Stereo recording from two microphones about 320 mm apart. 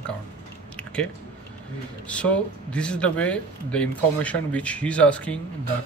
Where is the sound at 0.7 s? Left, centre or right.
Centre.